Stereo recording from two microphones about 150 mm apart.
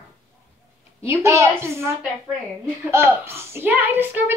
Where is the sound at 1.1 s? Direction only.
20° right (ahead or behind).